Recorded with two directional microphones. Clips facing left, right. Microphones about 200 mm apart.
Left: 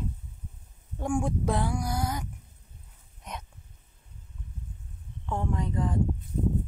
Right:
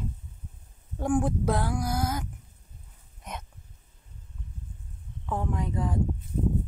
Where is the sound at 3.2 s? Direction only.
Centre (ahead or behind).